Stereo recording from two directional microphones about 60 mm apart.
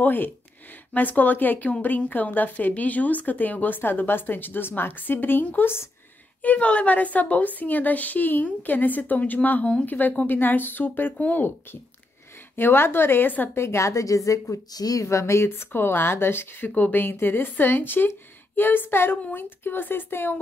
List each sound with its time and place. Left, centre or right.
0.0 s a woman's voice: left
6.4 s a woman's voice: left
12.5 s a woman's voice: left
13.6 s a woman's voice: left
15.0 s a woman's voice: left